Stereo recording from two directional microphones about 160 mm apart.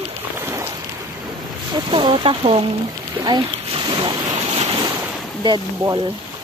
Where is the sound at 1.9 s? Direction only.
30° right (ahead or behind).